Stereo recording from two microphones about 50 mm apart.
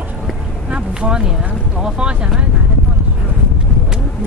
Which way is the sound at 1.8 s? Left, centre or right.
Centre.